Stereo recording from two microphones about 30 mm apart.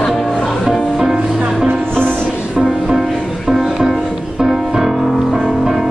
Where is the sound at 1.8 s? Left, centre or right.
Left.